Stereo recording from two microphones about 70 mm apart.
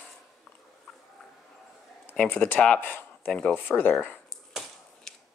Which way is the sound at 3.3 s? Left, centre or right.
Centre.